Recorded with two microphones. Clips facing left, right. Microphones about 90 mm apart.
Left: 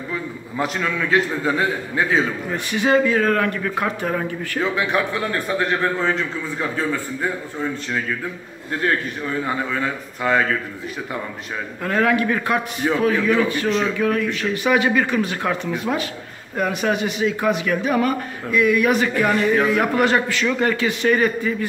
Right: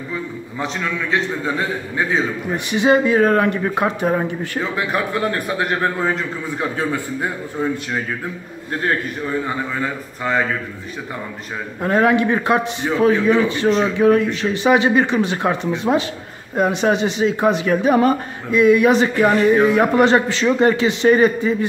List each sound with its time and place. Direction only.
0.7 s a man's voice: 5° left (ahead or behind)
2.5 s speech: 20° right (ahead or behind)
4.6 s a man's voice: centre (ahead or behind)
9.8 s a man's voice: centre (ahead or behind)
11.8 s speech: 25° right (ahead or behind)